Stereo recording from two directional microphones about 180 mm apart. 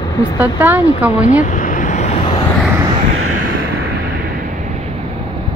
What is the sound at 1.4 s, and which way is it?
Vehicle, 45° left (ahead or behind).